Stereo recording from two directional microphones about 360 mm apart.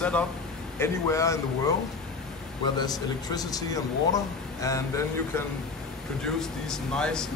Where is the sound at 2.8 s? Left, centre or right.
Centre.